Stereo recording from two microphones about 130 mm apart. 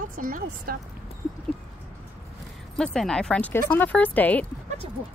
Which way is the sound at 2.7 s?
5° left (ahead or behind).